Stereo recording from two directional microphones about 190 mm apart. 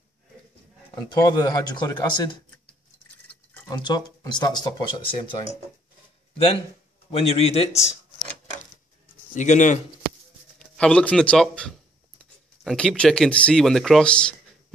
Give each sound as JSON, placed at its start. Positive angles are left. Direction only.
{"t": 1.1, "sound": "speech", "side_deg": 20}
{"t": 3.6, "sound": "speech", "side_deg": 20}
{"t": 7.1, "sound": "a man's voice", "side_deg": 30}
{"t": 9.3, "sound": "a man's voice", "side_deg": 40}
{"t": 10.6, "sound": "speech", "side_deg": 5}